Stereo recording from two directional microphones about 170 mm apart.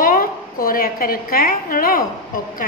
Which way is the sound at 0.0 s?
55° left (ahead or behind).